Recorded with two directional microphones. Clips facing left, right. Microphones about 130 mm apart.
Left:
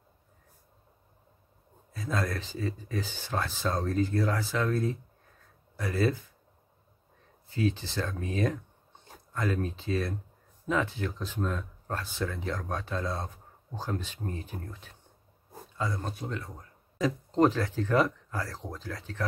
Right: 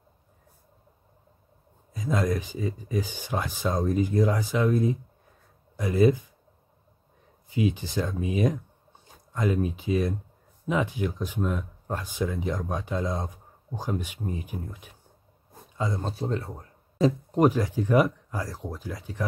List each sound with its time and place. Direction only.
2.0 s speech: 15° right (ahead or behind)
7.4 s speech: 15° right (ahead or behind)
15.8 s speech: 25° right (ahead or behind)
17.3 s speech: 15° right (ahead or behind)